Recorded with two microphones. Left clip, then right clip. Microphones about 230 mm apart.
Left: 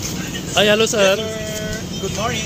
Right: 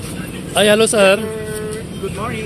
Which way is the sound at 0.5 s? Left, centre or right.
Right.